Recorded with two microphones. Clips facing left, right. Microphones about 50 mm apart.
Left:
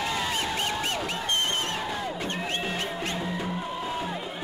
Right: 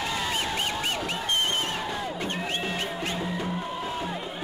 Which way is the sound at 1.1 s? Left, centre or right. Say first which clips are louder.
Right 1 dB; centre.